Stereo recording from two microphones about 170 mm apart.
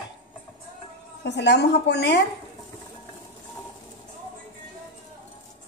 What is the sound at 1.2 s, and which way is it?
Speech, 90° left.